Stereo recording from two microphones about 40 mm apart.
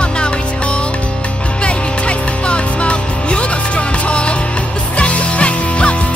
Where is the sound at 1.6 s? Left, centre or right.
Left.